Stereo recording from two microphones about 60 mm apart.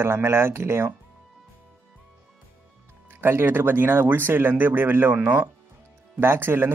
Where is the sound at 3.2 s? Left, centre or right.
Right.